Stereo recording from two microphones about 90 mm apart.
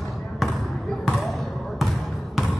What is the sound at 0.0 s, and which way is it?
Basketball bounce, centre (ahead or behind).